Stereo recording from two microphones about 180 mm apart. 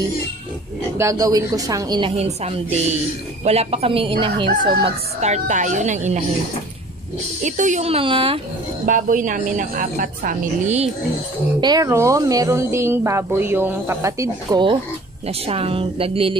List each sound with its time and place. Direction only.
0.9 s a woman's voice: 15° right (ahead or behind)
5.2 s a woman's voice: 40° right (ahead or behind)
7.4 s a woman's voice: 45° right (ahead or behind)
8.8 s a woman's voice: 45° right (ahead or behind)
11.6 s a woman's voice: 20° right (ahead or behind)